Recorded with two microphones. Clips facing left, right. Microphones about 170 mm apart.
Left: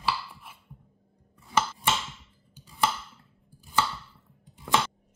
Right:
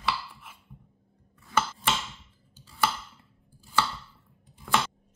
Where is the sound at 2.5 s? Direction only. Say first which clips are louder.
Left 2 dB; 15° left (ahead or behind).